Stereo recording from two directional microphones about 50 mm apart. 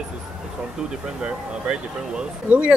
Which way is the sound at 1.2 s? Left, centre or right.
Centre.